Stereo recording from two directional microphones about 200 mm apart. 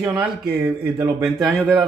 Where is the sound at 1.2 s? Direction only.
Centre (ahead or behind).